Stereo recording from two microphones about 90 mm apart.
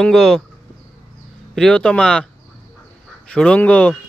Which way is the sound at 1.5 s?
10° left (ahead or behind).